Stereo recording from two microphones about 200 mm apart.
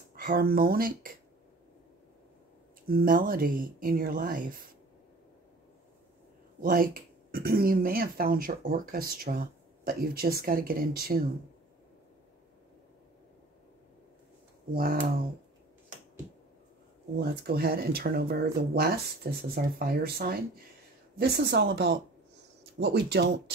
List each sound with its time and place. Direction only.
0.1 s speech: 45° right (ahead or behind)
2.9 s speech: 45° right (ahead or behind)
6.6 s speech: 45° right (ahead or behind)
14.7 s speech: 50° right (ahead or behind)
17.2 s speech: 50° right (ahead or behind)